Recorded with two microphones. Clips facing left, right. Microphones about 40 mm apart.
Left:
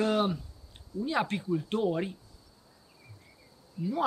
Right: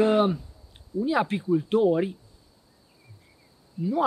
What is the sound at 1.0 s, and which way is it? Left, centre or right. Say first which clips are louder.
Speech: right 5 dB; centre.